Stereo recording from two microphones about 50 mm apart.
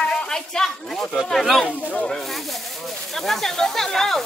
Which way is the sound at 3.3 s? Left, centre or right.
Centre.